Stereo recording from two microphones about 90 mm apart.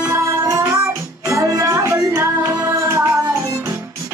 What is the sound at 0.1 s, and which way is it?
Music, 35° right (ahead or behind).